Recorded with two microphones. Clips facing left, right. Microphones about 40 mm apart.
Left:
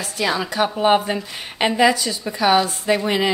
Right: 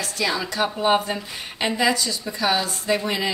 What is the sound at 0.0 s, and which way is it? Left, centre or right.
A woman's voice, left.